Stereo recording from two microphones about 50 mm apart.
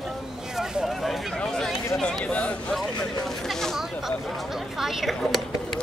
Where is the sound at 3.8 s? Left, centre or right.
Centre.